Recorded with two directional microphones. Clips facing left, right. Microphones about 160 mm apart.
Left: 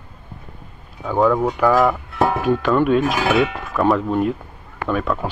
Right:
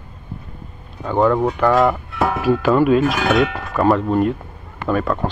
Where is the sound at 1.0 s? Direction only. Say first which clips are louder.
Right 1 dB; 5° left (ahead or behind).